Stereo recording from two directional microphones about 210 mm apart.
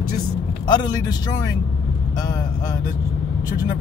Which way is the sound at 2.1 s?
20° left (ahead or behind).